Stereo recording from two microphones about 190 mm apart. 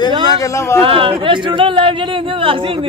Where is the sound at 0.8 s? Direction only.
30° right (ahead or behind).